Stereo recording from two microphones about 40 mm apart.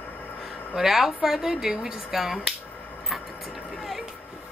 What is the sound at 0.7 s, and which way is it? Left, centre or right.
Speech, centre.